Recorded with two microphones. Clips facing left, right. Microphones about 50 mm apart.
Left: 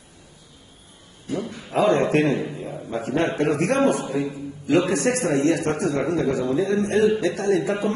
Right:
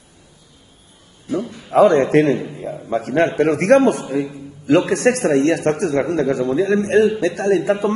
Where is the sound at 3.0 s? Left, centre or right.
Right.